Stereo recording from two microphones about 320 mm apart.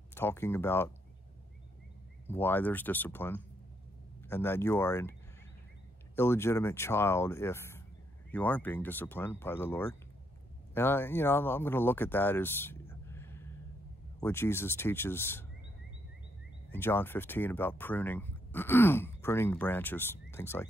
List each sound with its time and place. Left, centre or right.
0.1 s speech: centre
2.2 s speech: centre
6.1 s speech: centre
13.1 s a sound: centre
14.2 s speech: centre
16.7 s speech: centre